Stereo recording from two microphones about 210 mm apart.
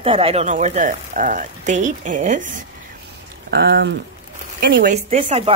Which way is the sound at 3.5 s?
55° right (ahead or behind).